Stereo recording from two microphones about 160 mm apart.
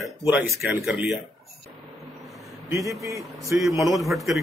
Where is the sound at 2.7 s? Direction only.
20° right (ahead or behind).